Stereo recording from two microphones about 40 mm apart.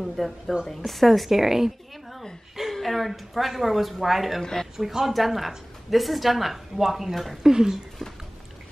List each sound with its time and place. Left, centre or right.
0.0 s a woman's voice: centre
2.7 s a woman's voice: centre
4.4 s a woman's voice: centre
4.7 s a woman's voice: centre
7.4 s speech: centre